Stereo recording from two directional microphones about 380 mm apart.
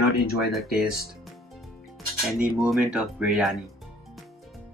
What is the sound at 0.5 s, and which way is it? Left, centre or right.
Music, centre.